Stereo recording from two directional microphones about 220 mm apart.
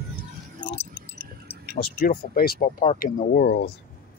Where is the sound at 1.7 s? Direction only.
45° left (ahead or behind).